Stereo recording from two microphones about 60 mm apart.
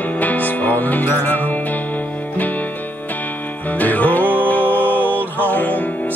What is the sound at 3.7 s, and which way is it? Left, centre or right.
Music, left.